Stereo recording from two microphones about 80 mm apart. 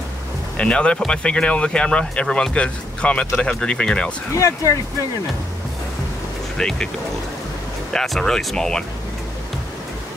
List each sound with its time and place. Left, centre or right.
0.6 s speech: centre
4.4 s speech: left
6.6 s speech: centre
7.9 s speech: centre